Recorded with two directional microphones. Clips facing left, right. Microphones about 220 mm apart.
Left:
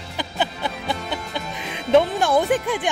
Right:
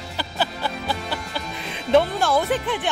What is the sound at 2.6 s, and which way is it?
Speech, 10° left (ahead or behind).